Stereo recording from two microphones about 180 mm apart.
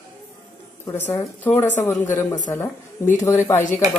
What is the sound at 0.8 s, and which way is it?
Speech, 15° left (ahead or behind).